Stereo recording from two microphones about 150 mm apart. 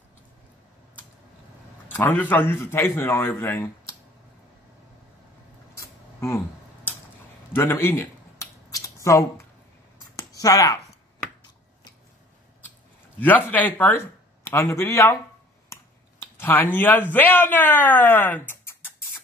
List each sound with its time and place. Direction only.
2.0 s a man's voice: 10° left (ahead or behind)
5.8 s a sound: 20° left (ahead or behind)
7.5 s scissors: 15° left (ahead or behind)
10.1 s a sound: 25° left (ahead or behind)
13.2 s a man's voice: 10° left (ahead or behind)
16.3 s a man's voice: 15° left (ahead or behind)